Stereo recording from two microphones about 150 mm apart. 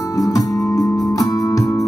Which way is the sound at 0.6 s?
20° left (ahead or behind).